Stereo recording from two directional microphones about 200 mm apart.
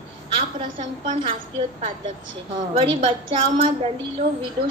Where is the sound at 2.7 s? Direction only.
25° right (ahead or behind).